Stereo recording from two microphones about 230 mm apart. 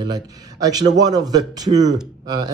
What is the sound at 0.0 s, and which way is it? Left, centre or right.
Speech, centre.